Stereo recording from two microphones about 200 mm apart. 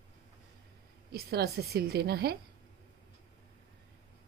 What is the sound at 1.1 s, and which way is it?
A woman's voice, 50° right (ahead or behind).